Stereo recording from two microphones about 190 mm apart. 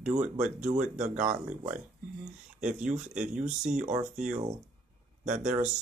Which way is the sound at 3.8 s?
40° right (ahead or behind).